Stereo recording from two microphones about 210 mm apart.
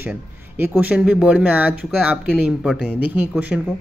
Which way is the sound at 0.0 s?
10° right (ahead or behind).